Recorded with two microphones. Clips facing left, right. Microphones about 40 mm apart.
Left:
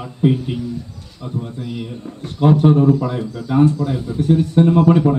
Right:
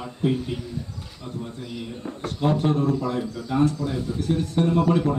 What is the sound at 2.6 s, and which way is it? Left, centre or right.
A man's voice, left.